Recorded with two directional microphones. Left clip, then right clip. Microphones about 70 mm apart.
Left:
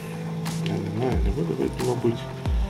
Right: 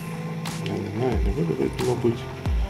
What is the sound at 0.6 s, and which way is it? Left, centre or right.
Wild animals, centre.